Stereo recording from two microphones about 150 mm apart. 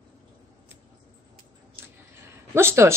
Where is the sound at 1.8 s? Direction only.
15° right (ahead or behind).